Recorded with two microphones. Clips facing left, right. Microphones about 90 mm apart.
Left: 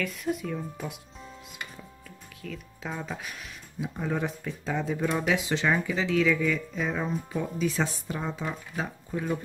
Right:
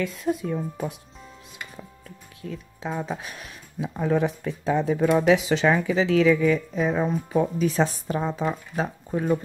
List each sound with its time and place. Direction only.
0.0 s speech: 30° right (ahead or behind)
2.0 s music: 25° right (ahead or behind)
3.1 s speech: 40° right (ahead or behind)
3.8 s speech: 60° right (ahead or behind); by 7.1 s 45° right (ahead or behind)
7.1 s speech: 65° right (ahead or behind)
7.6 s speech: 40° right (ahead or behind)